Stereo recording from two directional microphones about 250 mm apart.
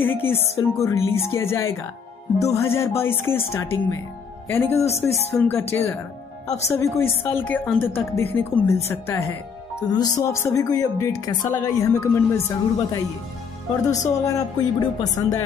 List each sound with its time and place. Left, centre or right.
0.0 s speech: centre
6.4 s speech: left
6.7 s speech: centre
14.0 s speech: centre